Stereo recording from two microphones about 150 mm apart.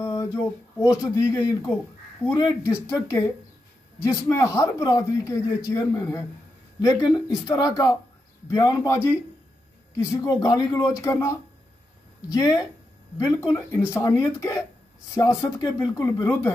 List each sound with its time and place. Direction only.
0.0 s speech: 20° left (ahead or behind)
4.3 s speech: 20° left (ahead or behind)